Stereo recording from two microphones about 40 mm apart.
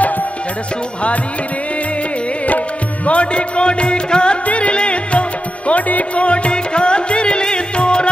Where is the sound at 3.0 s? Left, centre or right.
Left.